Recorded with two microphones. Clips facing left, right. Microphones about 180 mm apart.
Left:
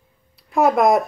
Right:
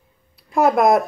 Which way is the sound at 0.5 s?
Centre (ahead or behind).